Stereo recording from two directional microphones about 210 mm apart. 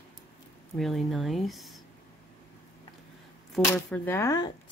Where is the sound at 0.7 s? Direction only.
Centre (ahead or behind).